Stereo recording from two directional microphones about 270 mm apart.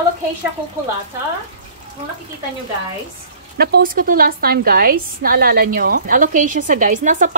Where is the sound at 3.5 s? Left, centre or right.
Right.